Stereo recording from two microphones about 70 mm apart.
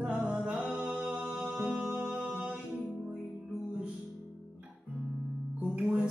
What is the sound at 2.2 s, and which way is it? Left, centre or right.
Music, centre.